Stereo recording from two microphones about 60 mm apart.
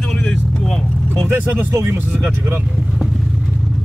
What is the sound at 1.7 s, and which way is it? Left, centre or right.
Speech, right.